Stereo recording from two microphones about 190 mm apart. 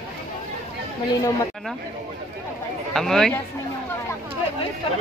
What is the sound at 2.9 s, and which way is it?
Speech, centre (ahead or behind).